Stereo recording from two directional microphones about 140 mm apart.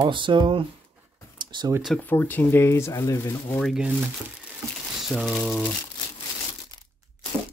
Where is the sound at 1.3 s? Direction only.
30° right (ahead or behind).